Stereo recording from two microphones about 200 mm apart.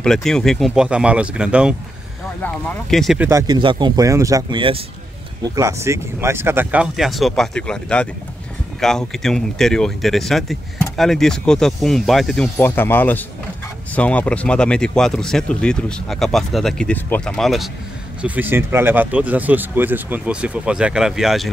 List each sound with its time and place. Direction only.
0.0 s speech: 5° left (ahead or behind)
3.3 s speech: 20° right (ahead or behind)
5.4 s speech: 15° right (ahead or behind); by 12.4 s centre (ahead or behind)
12.5 s speech: 10° left (ahead or behind)